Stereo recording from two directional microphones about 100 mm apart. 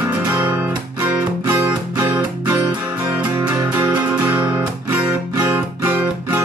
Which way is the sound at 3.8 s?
20° right (ahead or behind).